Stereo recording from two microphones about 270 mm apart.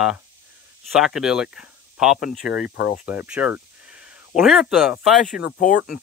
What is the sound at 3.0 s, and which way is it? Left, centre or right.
Speech, centre.